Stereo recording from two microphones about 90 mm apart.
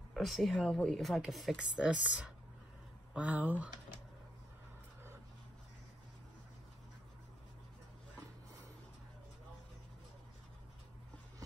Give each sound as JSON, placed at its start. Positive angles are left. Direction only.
{"t": 0.1, "sound": "speech", "side_deg": 0}
{"t": 1.8, "sound": "speech", "side_deg": -10}